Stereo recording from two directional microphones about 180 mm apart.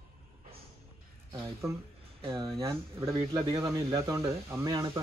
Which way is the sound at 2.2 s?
25° right (ahead or behind).